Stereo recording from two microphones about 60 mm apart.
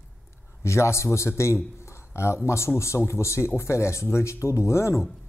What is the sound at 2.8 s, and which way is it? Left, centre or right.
Speech, left.